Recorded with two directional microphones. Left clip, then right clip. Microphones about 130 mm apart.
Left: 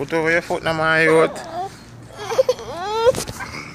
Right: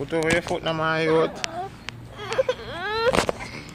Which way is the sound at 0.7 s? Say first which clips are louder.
Left 7 dB; 15° left (ahead or behind).